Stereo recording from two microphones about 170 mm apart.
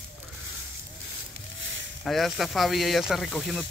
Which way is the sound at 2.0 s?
Centre (ahead or behind).